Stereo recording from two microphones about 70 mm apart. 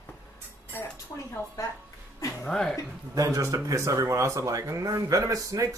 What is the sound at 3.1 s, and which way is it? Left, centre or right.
Speech, right.